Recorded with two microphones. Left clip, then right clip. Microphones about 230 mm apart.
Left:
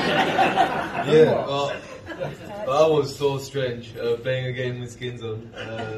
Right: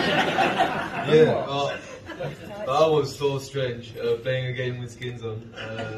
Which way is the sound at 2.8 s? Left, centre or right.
Centre.